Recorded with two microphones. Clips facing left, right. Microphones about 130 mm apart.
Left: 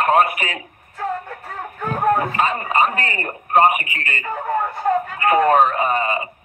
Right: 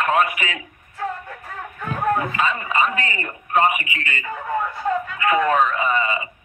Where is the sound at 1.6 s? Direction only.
40° left (ahead or behind).